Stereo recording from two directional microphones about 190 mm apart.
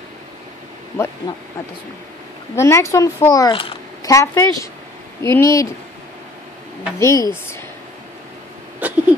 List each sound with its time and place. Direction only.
1.2 s speech: 20° left (ahead or behind)
2.5 s a woman's voice: 15° left (ahead or behind)
7.0 s a woman's voice: 15° left (ahead or behind)
8.7 s a sound: 10° right (ahead or behind)